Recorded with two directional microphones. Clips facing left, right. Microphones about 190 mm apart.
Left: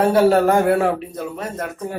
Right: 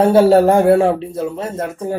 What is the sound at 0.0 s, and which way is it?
Speech, 30° right (ahead or behind).